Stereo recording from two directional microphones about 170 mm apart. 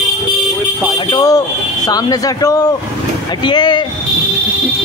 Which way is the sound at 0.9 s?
25° left (ahead or behind).